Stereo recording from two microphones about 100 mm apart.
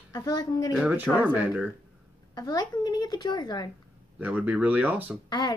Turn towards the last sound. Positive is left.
turn(degrees=45)  # may be behind; listen again after turning